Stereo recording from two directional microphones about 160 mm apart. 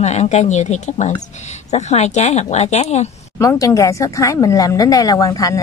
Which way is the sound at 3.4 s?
20° left (ahead or behind).